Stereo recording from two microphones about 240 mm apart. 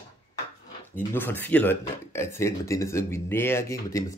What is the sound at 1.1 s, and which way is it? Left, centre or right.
Speech, centre.